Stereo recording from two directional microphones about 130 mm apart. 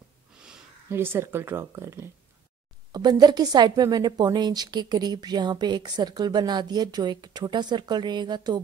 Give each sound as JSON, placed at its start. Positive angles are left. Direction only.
{"t": 0.8, "sound": "speech", "side_deg": -20}
{"t": 2.9, "sound": "a woman's voice", "side_deg": -30}